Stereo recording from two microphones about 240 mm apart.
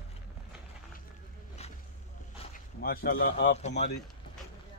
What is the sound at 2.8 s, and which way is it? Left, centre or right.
Speech, left.